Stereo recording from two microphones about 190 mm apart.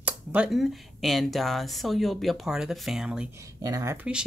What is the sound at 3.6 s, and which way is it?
Speech, 20° right (ahead or behind).